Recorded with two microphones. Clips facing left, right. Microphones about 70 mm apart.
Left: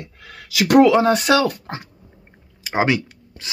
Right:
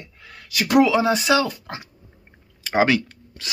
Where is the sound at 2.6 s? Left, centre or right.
Left.